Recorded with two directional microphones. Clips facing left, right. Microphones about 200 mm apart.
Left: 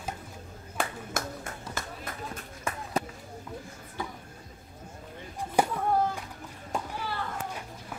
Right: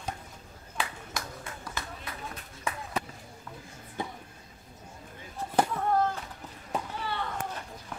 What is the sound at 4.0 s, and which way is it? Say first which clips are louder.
Music: right 1 dB; 25° right (ahead or behind).